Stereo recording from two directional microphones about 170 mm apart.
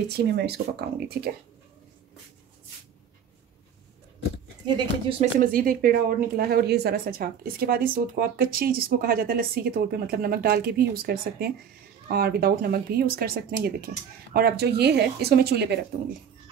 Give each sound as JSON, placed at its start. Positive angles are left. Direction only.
{"t": 0.1, "sound": "speech", "side_deg": -75}
{"t": 5.2, "sound": "a woman's voice", "side_deg": -55}